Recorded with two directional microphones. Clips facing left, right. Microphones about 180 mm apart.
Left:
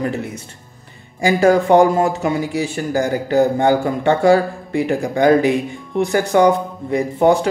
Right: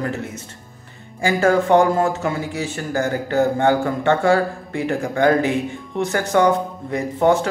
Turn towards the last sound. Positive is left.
turn(degrees=15)  # may be behind; listen again after turning